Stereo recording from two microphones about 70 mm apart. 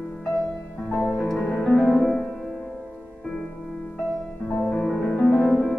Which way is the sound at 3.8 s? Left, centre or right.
Centre.